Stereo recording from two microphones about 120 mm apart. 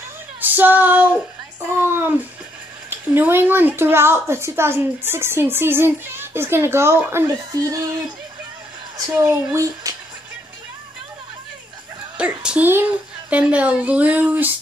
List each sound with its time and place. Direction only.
0.4 s female singing: 15° right (ahead or behind)
1.8 s a woman's voice: 20° right (ahead or behind)
7.2 s speech: 30° right (ahead or behind)
9.3 s a woman's voice: 25° right (ahead or behind)
12.2 s a woman's voice: 10° right (ahead or behind)